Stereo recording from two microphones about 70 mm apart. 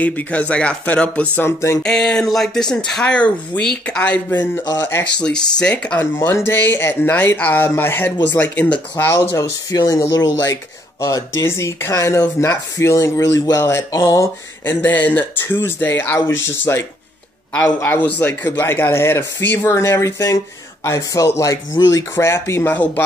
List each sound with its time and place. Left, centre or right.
0.0 s speech: left
1.4 s speech: left
1.8 s speech: centre
4.7 s speech: left
5.2 s speech: centre
5.9 s speech: left
7.6 s speech: left
9.8 s speech: left
10.1 s speech: left
11.4 s speech: left
14.6 s speech: left
17.9 s speech: left
22.7 s speech: left